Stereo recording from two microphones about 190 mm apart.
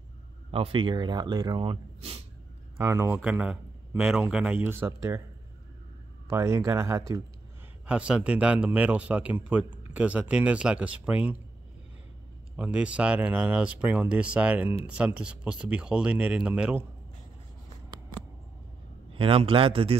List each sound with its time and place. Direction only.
0.5 s speech: 30° right (ahead or behind)
2.8 s speech: 15° right (ahead or behind)
6.2 s speech: 15° right (ahead or behind)
7.8 s speech: 5° right (ahead or behind)
12.5 s speech: 5° right (ahead or behind)
19.1 s speech: 30° right (ahead or behind)